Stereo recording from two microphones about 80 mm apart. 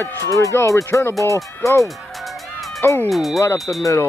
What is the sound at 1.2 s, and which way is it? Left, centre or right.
Fowl, left.